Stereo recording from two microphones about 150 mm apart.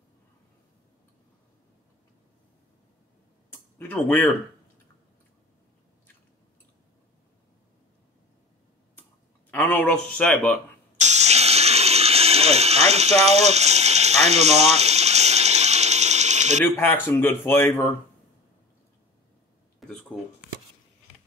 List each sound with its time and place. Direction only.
3.5 s speech: 10° left (ahead or behind)
9.5 s speech: 10° left (ahead or behind)
11.0 s music: 50° right (ahead or behind)
16.6 s a man's voice: 15° left (ahead or behind)
19.8 s a sound: centre (ahead or behind)